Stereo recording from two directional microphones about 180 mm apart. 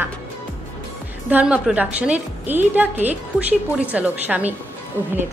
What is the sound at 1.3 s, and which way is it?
A woman's voice, 10° right (ahead or behind).